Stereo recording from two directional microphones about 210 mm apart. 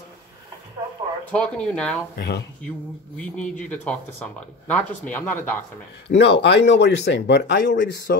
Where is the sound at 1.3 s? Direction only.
5° left (ahead or behind).